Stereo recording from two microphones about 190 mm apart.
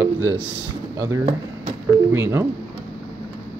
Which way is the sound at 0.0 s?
15° right (ahead or behind).